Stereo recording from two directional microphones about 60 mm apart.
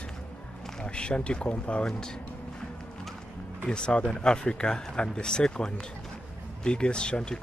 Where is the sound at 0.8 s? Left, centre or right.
Centre.